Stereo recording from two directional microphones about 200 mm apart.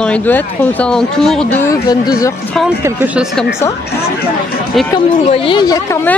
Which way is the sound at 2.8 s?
10° right (ahead or behind).